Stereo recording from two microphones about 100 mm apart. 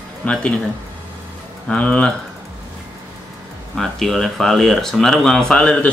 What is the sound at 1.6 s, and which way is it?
Speech, 10° left (ahead or behind).